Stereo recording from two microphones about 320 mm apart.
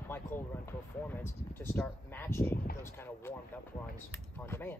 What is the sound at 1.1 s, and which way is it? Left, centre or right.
Speech, centre.